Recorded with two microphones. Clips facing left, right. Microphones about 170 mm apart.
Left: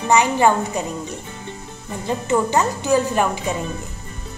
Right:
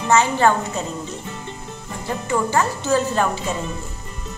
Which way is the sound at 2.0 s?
20° left (ahead or behind).